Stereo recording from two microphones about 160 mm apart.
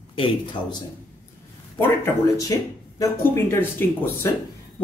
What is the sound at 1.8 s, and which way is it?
Speech, 20° left (ahead or behind).